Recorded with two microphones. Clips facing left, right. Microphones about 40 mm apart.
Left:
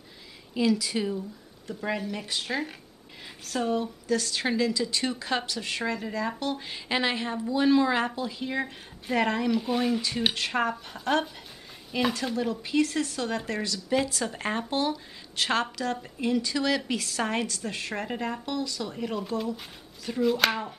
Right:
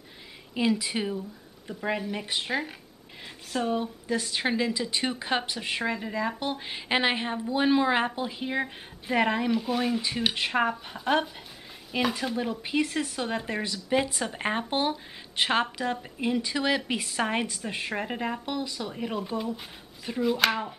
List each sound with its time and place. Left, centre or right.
0.6 s speech: right
9.6 s speech: centre
10.3 s speech: centre